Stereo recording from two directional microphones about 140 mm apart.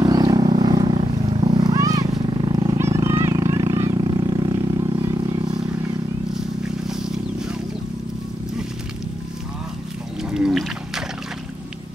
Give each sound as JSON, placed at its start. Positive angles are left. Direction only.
{"t": 0.0, "sound": "vehicle", "side_deg": -25}
{"t": 1.6, "sound": "wild animals", "side_deg": -25}
{"t": 5.0, "sound": "vehicle", "side_deg": -25}
{"t": 6.3, "sound": "a sound", "side_deg": -5}
{"t": 10.3, "sound": "whale vocalization", "side_deg": -5}